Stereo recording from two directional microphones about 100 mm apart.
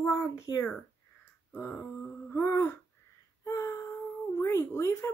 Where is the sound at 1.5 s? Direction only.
15° left (ahead or behind).